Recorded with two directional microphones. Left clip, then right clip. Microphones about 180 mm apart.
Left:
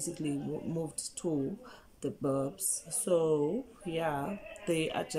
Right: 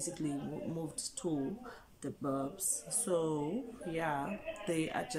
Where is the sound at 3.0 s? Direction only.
15° left (ahead or behind).